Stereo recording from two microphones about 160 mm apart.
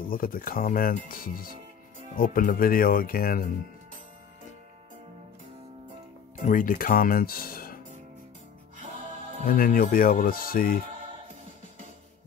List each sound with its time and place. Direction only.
0.1 s speech: 65° left (ahead or behind)
6.4 s speech: 60° left (ahead or behind)
9.4 s speech: 65° left (ahead or behind)